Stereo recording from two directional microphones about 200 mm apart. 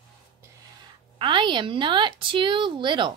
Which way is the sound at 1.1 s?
25° right (ahead or behind).